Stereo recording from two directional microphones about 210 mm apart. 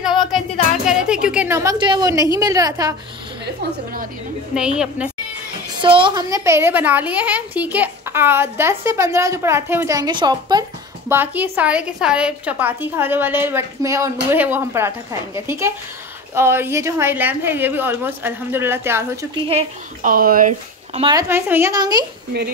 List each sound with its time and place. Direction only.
0.3 s music: centre (ahead or behind)
0.8 s a woman's voice: 5° right (ahead or behind)
4.6 s a woman's voice: 5° right (ahead or behind)
5.8 s a woman's voice: 25° right (ahead or behind)
20.0 s speech: 40° right (ahead or behind)
21.0 s a woman's voice: 15° right (ahead or behind)